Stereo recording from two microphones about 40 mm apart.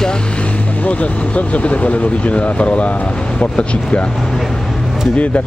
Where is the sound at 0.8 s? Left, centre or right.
Left.